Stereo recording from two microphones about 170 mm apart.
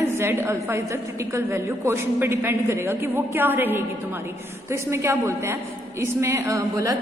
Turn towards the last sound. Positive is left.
turn(degrees=-20)  # may be behind; listen again after turning